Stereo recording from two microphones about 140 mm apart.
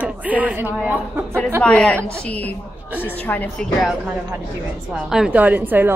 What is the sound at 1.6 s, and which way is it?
A woman's voice, 10° left (ahead or behind).